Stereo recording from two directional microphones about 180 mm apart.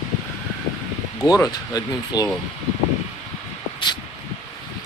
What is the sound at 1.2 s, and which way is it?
Speech, 20° left (ahead or behind).